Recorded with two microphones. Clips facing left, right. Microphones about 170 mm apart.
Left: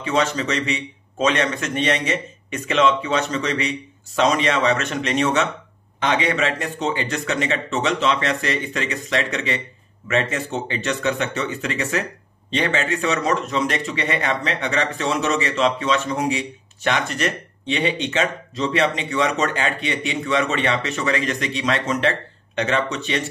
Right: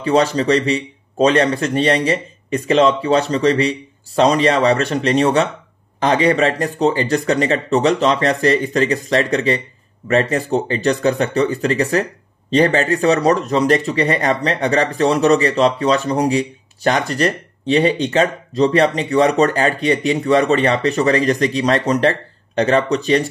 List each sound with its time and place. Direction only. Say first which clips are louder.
0.0 s speech: right 6 dB; 35° right (ahead or behind)